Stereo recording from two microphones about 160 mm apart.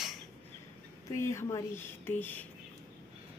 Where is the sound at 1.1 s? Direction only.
15° left (ahead or behind).